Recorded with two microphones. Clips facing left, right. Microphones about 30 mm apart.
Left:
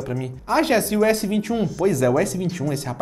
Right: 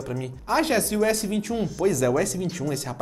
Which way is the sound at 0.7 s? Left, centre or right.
Centre.